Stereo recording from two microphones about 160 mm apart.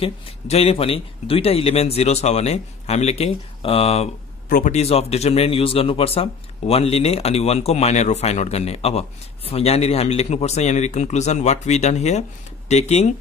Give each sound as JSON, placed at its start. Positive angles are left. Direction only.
{"t": 0.0, "sound": "speech", "side_deg": 40}
{"t": 4.5, "sound": "speech", "side_deg": 60}
{"t": 4.7, "sound": "speech", "side_deg": 40}